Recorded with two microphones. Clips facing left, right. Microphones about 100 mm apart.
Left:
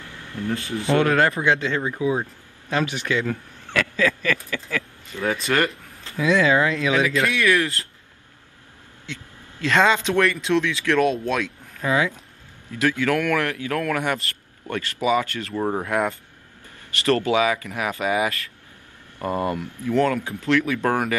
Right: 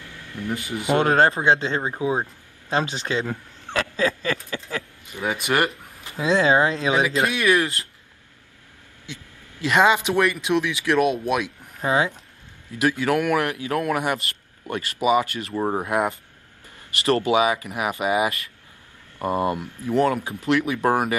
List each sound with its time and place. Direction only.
0.3 s speech: 20° right (ahead or behind)
1.0 s speech: 30° right (ahead or behind)
5.1 s speech: 15° right (ahead or behind)
9.0 s speech: 15° right (ahead or behind)
11.8 s speech: 25° right (ahead or behind)